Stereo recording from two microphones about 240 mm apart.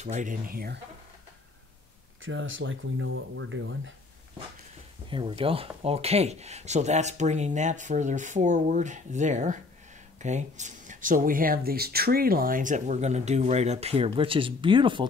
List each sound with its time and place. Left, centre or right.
0.0 s speech: right
2.2 s speech: right
5.1 s speech: right